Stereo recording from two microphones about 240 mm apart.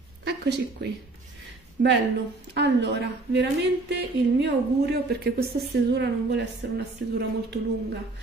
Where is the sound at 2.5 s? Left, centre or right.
Right.